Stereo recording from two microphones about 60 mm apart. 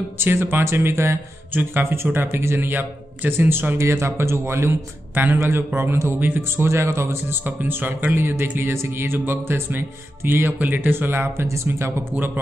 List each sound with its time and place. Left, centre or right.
0.2 s speech: right
1.5 s speech: right
3.8 s speech: right
6.1 s speech: right
6.6 s speech: right